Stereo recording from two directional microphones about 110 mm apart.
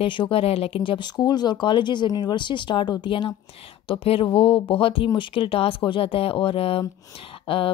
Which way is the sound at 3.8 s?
60° left (ahead or behind).